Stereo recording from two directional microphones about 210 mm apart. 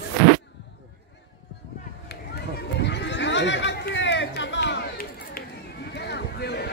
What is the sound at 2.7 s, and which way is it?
Chatter, 55° left (ahead or behind).